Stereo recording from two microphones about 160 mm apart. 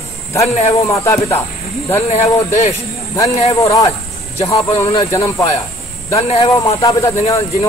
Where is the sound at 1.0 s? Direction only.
20° left (ahead or behind).